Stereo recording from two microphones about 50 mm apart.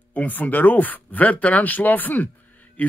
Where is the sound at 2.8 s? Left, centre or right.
Left.